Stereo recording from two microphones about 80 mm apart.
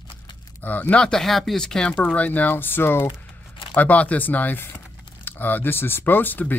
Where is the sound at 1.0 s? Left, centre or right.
Centre.